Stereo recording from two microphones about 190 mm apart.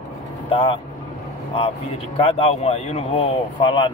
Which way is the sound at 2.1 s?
30° left (ahead or behind).